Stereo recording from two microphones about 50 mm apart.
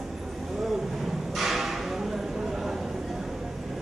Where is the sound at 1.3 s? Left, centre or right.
Centre.